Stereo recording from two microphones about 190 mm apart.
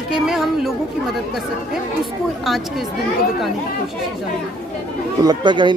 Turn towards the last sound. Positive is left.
turn(degrees=-25)  # may be behind; listen again after turning